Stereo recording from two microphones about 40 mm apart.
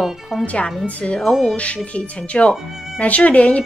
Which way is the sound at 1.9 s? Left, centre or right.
Left.